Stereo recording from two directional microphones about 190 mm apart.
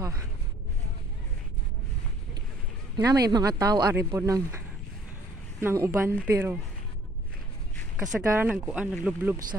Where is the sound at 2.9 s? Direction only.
20° right (ahead or behind).